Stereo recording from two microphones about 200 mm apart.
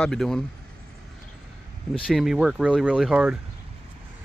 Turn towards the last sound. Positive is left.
turn(degrees=-5)  # may be behind; listen again after turning